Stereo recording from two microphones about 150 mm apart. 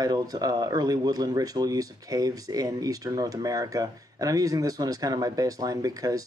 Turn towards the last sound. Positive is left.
turn(degrees=-25)  # may be behind; listen again after turning